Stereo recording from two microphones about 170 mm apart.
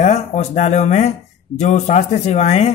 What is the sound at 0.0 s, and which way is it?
A man's voice, 40° left (ahead or behind).